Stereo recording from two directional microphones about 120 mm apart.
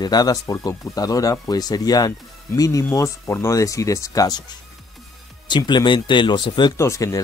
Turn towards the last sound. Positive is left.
turn(degrees=25)  # may be behind; listen again after turning